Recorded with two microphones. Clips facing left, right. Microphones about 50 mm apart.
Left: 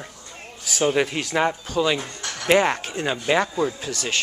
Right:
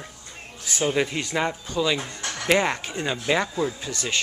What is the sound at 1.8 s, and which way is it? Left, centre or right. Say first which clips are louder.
Speech: left 1 dB; left.